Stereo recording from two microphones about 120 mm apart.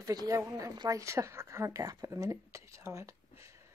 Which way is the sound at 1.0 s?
25° right (ahead or behind).